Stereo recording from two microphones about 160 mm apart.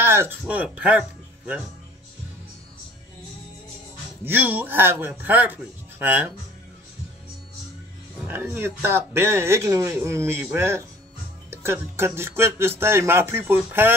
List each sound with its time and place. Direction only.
0.0 s speech: 15° right (ahead or behind)
4.2 s speech: 10° right (ahead or behind)
8.3 s speech: 15° right (ahead or behind)